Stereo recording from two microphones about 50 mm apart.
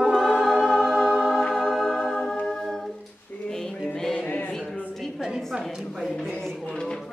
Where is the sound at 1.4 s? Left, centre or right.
Centre.